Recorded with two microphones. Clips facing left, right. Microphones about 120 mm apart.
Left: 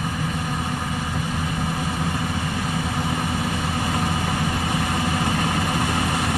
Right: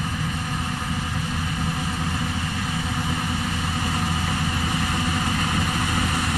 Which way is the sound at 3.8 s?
20° left (ahead or behind).